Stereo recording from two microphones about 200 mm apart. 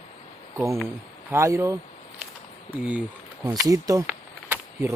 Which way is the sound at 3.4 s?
15° right (ahead or behind).